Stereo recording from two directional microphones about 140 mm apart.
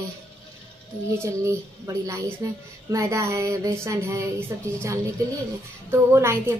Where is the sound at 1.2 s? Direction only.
20° right (ahead or behind).